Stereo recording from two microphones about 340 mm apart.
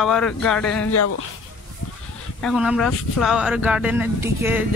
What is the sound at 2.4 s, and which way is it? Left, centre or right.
Speech, centre.